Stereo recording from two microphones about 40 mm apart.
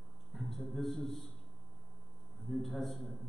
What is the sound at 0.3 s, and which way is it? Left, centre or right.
A man's voice, centre.